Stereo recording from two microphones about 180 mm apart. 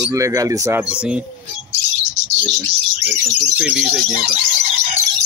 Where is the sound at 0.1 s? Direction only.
15° right (ahead or behind).